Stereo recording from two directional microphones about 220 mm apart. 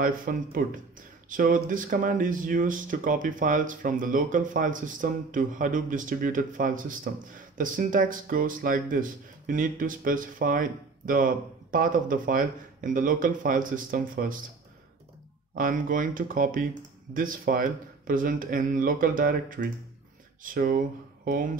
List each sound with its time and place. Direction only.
0.0 s speech: 40° right (ahead or behind)
15.5 s speech: 40° right (ahead or behind)